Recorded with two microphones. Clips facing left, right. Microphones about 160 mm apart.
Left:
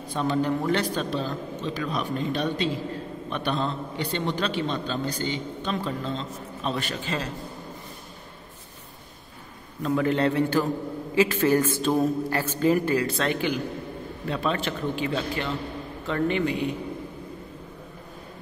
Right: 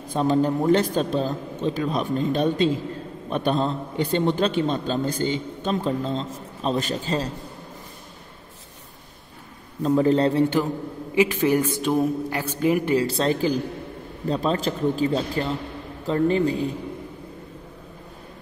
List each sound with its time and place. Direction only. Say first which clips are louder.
0.1 s a man's voice: right 4 dB; 40° right (ahead or behind)
9.8 s a man's voice: right 4 dB; 35° right (ahead or behind)
10.4 s a man's voice: right 2 dB; 20° right (ahead or behind)
13.0 s a man's voice: right 4 dB; 30° right (ahead or behind)